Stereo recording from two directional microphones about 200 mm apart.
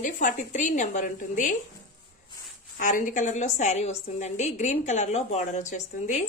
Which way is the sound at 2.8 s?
40° left (ahead or behind).